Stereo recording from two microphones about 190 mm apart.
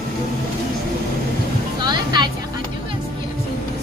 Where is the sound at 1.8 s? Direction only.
20° right (ahead or behind).